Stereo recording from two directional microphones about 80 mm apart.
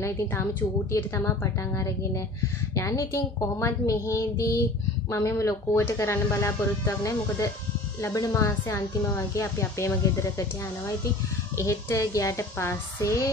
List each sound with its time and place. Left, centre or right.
0.0 s a woman's voice: left
11.5 s speech: left